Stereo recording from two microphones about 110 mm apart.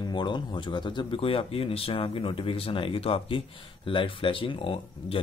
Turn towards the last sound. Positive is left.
turn(degrees=55)  # may be behind; listen again after turning